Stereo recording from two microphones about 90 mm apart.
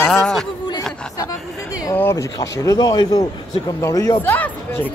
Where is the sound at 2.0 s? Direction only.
25° left (ahead or behind).